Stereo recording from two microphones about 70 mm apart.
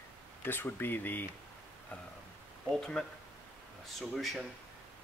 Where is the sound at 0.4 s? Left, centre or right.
Left.